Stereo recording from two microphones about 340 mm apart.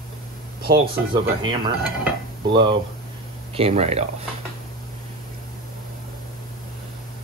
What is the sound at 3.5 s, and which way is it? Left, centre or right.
Speech, centre.